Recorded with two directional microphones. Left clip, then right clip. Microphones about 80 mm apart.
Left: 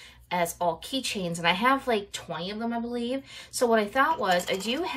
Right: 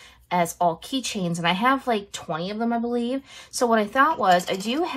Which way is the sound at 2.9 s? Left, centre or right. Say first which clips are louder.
Right 4 dB; right.